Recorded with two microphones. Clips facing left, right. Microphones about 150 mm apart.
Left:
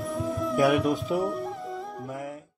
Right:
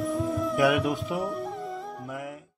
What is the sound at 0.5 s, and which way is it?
Speech, 35° left (ahead or behind).